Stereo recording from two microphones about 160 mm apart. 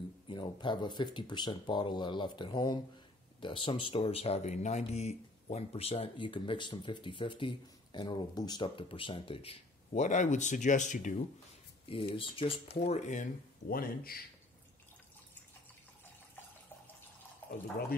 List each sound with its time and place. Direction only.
0.3 s speech: 30° left (ahead or behind)
10.0 s speech: 50° left (ahead or behind)
11.8 s speech: 35° left (ahead or behind)
12.8 s speech: 45° left (ahead or behind); by 14.2 s 65° left (ahead or behind)
17.4 s water: 10° left (ahead or behind)